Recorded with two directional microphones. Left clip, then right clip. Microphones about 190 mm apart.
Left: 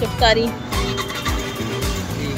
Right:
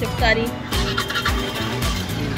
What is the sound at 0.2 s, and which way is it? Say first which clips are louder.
Speech: left 3 dB; 25° left (ahead or behind).